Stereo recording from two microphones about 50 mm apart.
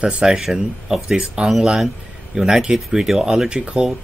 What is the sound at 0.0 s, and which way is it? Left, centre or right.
Speech, right.